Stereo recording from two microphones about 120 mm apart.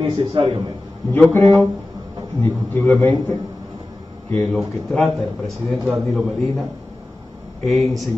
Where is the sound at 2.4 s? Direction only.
20° left (ahead or behind).